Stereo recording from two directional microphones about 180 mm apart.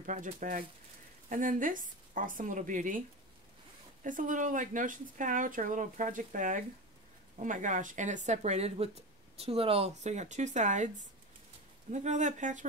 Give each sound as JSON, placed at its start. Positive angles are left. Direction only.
{"t": 0.0, "sound": "speech", "side_deg": -45}
{"t": 4.0, "sound": "speech", "side_deg": -45}